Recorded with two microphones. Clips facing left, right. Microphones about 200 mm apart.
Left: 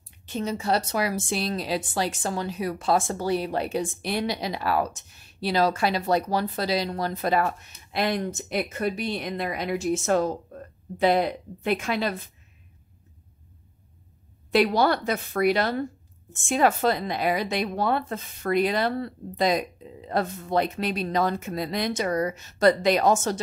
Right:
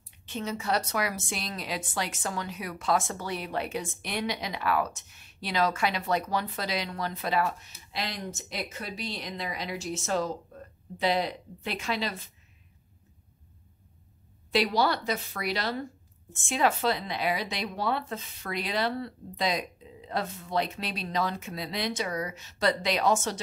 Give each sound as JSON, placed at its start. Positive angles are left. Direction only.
{"t": 0.3, "sound": "a woman's voice", "side_deg": 35}
{"t": 14.5, "sound": "speech", "side_deg": 55}